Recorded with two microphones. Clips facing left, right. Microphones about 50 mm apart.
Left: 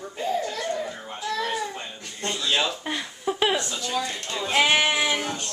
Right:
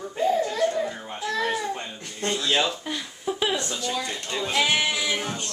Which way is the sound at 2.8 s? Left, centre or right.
Left.